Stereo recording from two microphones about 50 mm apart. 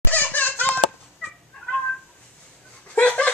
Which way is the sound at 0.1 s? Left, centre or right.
Left.